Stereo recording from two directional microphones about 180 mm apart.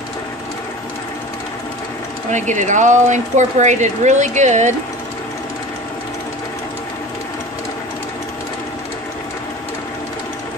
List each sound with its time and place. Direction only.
2.3 s speech: 40° right (ahead or behind)